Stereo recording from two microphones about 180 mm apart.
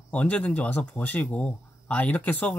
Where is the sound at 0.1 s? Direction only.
5° left (ahead or behind).